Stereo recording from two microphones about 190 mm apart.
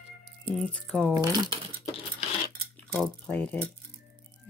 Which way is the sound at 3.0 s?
5° left (ahead or behind).